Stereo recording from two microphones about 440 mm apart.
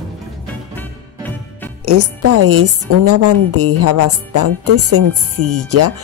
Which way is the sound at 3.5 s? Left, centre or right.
Right.